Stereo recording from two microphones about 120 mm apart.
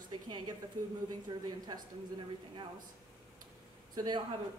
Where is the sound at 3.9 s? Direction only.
35° right (ahead or behind).